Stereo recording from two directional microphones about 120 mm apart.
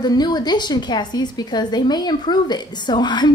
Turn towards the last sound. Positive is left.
turn(degrees=35)  # may be behind; listen again after turning